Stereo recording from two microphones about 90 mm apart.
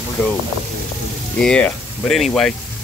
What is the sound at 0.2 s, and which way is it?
Speech, 25° left (ahead or behind).